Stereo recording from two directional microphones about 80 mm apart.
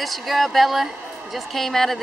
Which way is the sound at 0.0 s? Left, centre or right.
Centre.